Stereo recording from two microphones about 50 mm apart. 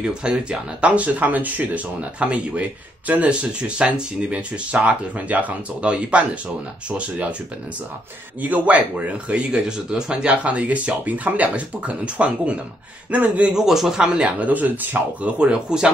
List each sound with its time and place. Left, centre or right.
0.0 s speech: centre
8.4 s speech: right
13.6 s speech: centre; by 15.3 s right
15.3 s speech: right